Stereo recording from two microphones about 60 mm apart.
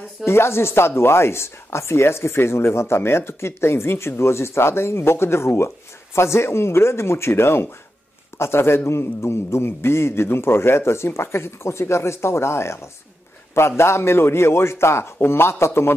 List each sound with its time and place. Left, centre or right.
0.2 s speech: left